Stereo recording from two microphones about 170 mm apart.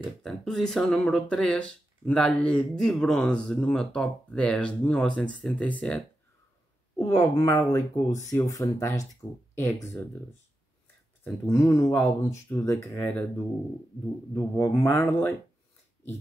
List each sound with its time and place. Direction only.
0.2 s speech: centre (ahead or behind)
7.0 s speech: 20° left (ahead or behind)
11.2 s speech: 15° left (ahead or behind)
14.3 s speech: 15° left (ahead or behind)